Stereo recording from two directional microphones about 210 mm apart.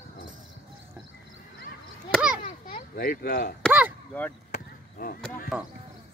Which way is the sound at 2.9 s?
45° left (ahead or behind).